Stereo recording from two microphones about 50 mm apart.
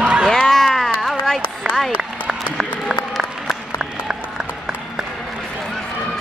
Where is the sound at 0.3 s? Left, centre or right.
Centre.